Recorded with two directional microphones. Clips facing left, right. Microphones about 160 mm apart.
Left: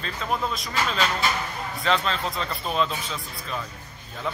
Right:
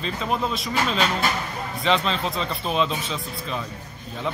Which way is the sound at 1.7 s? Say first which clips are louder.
Right 2 dB; centre (ahead or behind).